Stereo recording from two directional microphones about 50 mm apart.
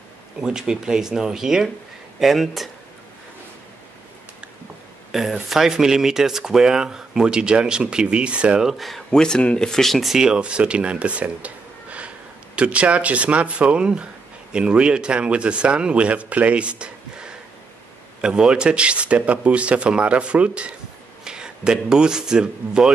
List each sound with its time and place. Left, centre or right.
0.4 s speech: centre
5.1 s a sound: centre
5.5 s speech: centre
8.6 s speech: centre
9.1 s speech: centre
10.1 s speech: centre